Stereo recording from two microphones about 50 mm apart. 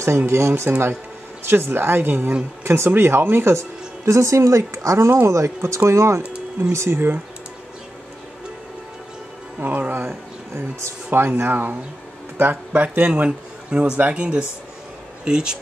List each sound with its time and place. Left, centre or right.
0.3 s speech: right
0.7 s a woman's voice: right
2.6 s speech: right
2.9 s speech: right
6.7 s speech: right
9.6 s music: right
11.1 s speech: right
12.8 s speech: right